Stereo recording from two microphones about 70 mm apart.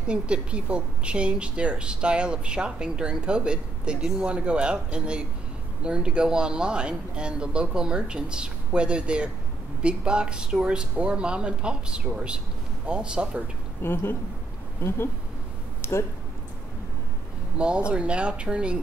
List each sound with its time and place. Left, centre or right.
0.0 s speech: centre
13.8 s speech: left
17.6 s speech: centre